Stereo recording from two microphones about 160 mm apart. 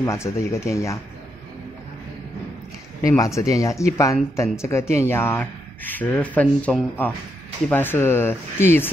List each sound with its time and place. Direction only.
0.0 s speech: 20° left (ahead or behind)
3.0 s speech: 20° left (ahead or behind)